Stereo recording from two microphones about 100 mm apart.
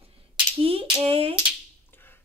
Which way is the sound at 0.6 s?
70° right (ahead or behind).